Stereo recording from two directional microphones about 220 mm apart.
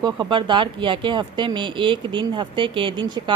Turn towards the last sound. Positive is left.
turn(degrees=-20)  # may be behind; listen again after turning